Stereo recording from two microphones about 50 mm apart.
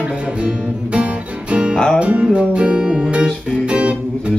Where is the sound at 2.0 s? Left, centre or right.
Right.